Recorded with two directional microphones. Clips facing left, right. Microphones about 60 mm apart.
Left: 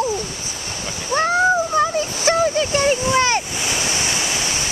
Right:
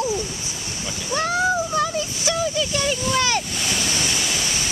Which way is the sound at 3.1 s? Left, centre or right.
Left.